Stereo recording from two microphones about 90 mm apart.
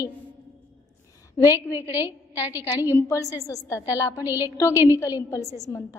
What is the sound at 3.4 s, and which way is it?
Speech, 40° left (ahead or behind).